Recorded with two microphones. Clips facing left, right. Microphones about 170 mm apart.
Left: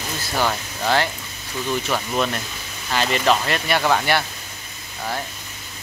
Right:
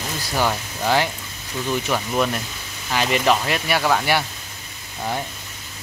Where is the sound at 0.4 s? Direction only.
10° right (ahead or behind).